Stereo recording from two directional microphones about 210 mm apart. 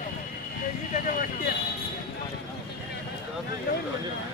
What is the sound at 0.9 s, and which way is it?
Speech, 40° left (ahead or behind).